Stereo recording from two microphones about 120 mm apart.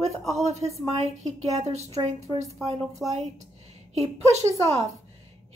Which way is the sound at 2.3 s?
65° right (ahead or behind).